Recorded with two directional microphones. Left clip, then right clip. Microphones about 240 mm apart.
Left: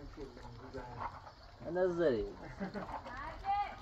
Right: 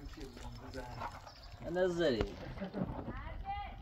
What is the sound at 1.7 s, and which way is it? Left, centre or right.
Speech, right.